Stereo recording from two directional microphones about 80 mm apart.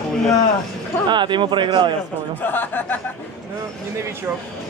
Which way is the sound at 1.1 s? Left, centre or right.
Right.